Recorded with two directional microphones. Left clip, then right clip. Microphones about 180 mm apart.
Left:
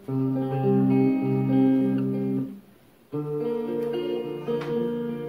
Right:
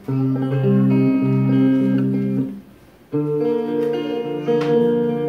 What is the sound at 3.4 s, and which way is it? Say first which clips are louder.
Music: right 6 dB; 35° left (ahead or behind).